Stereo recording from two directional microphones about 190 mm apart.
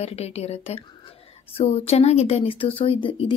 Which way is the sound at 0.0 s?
35° left (ahead or behind).